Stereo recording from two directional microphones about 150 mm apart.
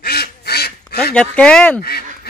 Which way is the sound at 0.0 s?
90° left.